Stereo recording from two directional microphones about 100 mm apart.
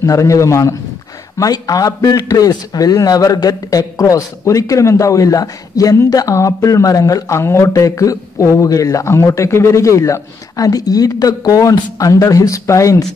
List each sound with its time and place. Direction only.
0.0 s a man's voice: 35° left (ahead or behind)